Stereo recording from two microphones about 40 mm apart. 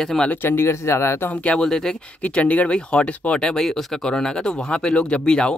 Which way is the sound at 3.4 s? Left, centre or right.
Centre.